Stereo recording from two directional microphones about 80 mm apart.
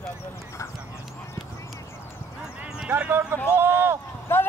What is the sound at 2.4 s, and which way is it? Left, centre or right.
Clip-clop, centre.